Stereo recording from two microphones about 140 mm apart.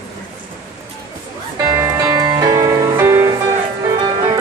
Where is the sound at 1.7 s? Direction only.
25° right (ahead or behind).